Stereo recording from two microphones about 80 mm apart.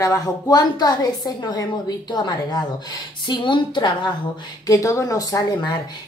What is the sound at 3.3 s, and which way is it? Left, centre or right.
Speech, left.